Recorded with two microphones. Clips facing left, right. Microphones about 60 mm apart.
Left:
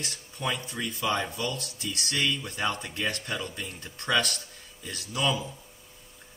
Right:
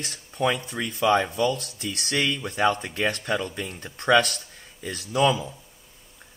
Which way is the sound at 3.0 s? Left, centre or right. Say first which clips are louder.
Right 6 dB; right.